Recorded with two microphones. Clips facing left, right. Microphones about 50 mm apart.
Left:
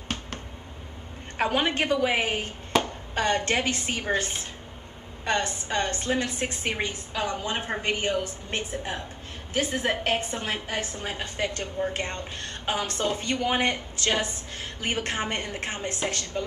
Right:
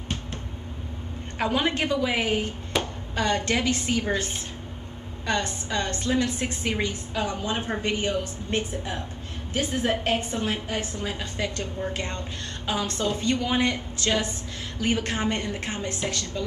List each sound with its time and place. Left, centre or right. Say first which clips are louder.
1.4 s a woman's voice: even; left
5.2 s a woman's voice: even; left